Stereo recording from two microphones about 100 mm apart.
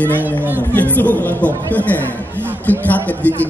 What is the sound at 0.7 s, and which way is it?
A man's voice, 15° left (ahead or behind).